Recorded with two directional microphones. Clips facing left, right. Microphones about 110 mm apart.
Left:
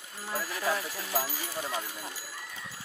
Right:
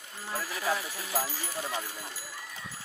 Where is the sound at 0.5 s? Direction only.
15° right (ahead or behind).